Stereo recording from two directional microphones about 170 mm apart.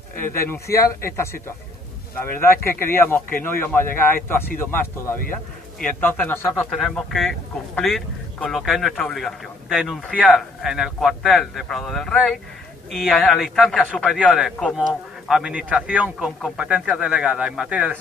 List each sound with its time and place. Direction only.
0.3 s speech: 15° left (ahead or behind); by 17.9 s 5° right (ahead or behind)